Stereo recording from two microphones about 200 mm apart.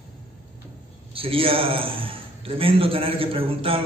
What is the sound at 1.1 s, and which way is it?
A man's voice, 25° right (ahead or behind).